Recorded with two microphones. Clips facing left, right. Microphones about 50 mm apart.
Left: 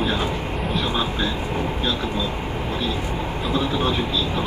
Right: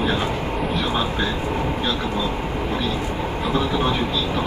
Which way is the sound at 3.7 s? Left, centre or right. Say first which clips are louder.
Right 1 dB; right.